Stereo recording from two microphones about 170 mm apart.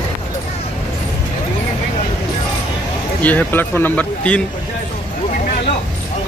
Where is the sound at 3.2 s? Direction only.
10° left (ahead or behind).